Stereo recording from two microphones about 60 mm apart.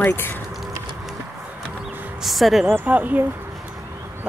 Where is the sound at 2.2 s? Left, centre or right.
Centre.